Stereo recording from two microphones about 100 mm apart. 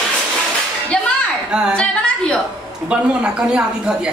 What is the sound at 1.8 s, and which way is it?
Speech, 10° left (ahead or behind).